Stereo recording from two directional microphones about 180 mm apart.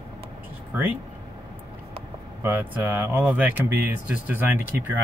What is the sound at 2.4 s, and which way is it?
Speech, 10° right (ahead or behind).